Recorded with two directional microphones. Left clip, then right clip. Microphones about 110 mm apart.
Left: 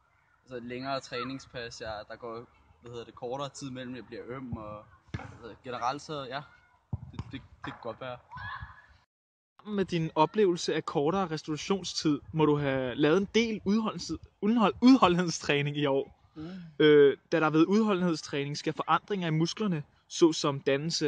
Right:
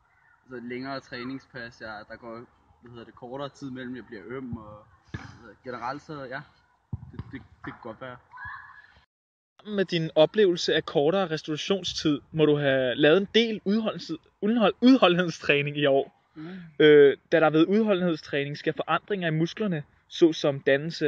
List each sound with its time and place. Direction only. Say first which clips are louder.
0.5 s speech: even; 25° left (ahead or behind)
9.7 s speech: right 4 dB; 5° left (ahead or behind)
15.8 s a man's voice: right 6 dB; 5° left (ahead or behind)